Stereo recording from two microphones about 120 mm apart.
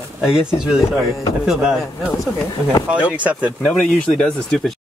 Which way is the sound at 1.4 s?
5° right (ahead or behind).